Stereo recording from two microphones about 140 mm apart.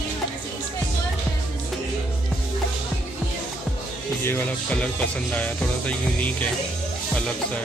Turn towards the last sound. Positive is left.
turn(degrees=10)  # may be behind; listen again after turning